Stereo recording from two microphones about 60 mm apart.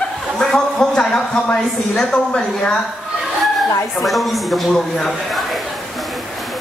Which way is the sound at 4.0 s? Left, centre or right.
Centre.